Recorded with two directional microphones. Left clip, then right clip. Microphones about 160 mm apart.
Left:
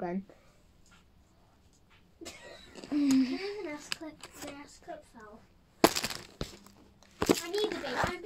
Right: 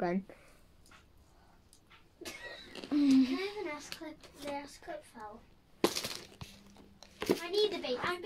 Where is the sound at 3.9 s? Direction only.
45° left (ahead or behind).